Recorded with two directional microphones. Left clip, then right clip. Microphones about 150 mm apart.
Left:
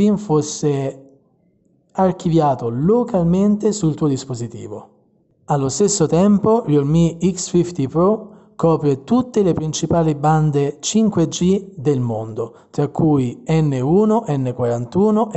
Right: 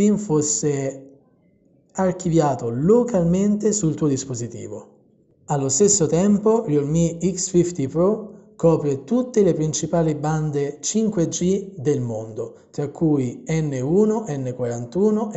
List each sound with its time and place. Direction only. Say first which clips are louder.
0.0 s a man's voice: left 2 dB; 30° left (ahead or behind)
2.0 s a man's voice: left 3 dB; 35° left (ahead or behind); by 15.3 s 50° left (ahead or behind)